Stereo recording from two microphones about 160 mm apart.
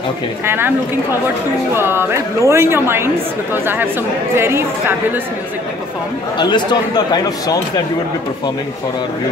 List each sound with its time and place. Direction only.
0.5 s speech: 15° right (ahead or behind)
1.8 s speech: 15° right (ahead or behind)
6.3 s a man's voice: 25° left (ahead or behind)